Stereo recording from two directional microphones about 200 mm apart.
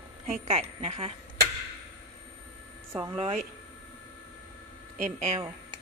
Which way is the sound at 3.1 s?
30° right (ahead or behind).